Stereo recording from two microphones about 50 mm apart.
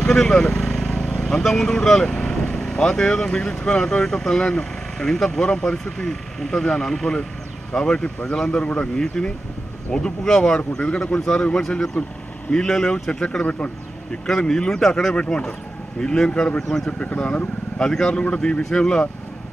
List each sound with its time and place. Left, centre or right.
0.1 s speech: centre
0.7 s vehicle: centre
0.9 s speech: centre
14.2 s speech: centre
15.1 s speech: left